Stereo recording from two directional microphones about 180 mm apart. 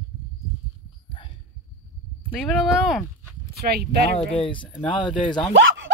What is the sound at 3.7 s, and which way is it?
Speech, 65° right (ahead or behind).